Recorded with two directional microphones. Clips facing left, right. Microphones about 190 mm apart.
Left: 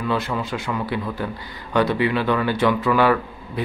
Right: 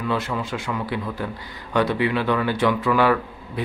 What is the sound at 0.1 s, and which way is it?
Speech, 35° left (ahead or behind).